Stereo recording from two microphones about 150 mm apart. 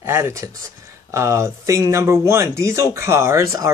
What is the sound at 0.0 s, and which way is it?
Speech, 20° right (ahead or behind).